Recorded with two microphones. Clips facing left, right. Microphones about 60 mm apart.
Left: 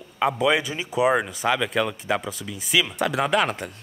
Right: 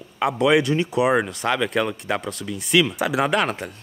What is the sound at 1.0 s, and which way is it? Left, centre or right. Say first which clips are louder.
Speech: left 1 dB; centre.